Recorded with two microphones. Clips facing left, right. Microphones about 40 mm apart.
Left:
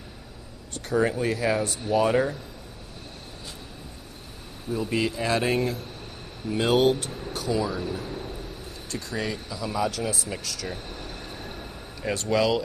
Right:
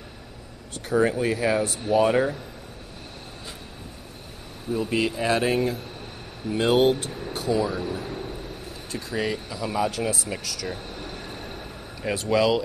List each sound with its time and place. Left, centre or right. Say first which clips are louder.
0.8 s speech: right 2 dB; centre
4.7 s speech: right 2 dB; centre
12.0 s speech: right 2 dB; centre